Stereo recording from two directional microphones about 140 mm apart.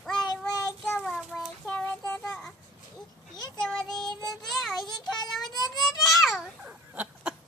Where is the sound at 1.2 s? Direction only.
Centre (ahead or behind).